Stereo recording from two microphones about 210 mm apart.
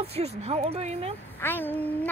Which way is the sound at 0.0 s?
30° right (ahead or behind).